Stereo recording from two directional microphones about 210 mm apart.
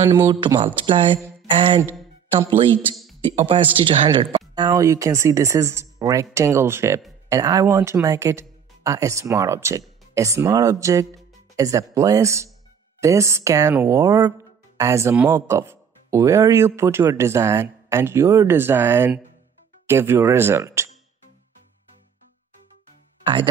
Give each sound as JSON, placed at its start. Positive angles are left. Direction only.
{"t": 0.0, "sound": "speech", "side_deg": -15}
{"t": 2.7, "sound": "speech", "side_deg": 0}
{"t": 3.3, "sound": "speech", "side_deg": -25}